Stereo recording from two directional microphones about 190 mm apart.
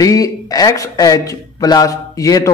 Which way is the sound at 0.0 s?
20° left (ahead or behind).